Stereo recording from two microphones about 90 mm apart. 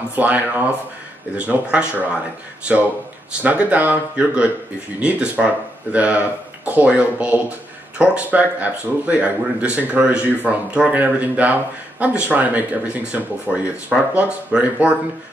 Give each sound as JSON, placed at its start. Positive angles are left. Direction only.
{"t": 0.1, "sound": "speech", "side_deg": -15}
{"t": 3.4, "sound": "speech", "side_deg": -15}